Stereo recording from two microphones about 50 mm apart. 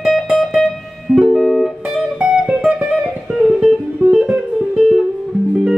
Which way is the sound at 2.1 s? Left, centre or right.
Centre.